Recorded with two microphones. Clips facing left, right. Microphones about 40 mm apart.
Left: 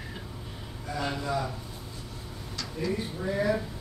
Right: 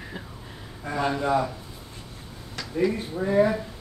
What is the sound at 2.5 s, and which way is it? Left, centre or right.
Speech, right.